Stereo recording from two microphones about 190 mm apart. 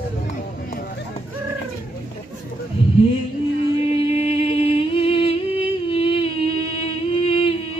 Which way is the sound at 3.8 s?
35° left (ahead or behind).